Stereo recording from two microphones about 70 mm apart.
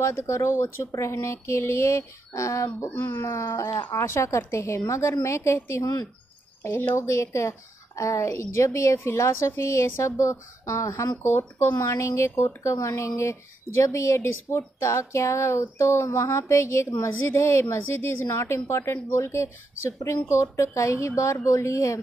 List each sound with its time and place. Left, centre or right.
0.0 s a woman's voice: left
2.9 s speech: left
3.2 s a woman's voice: left
6.6 s a woman's voice: left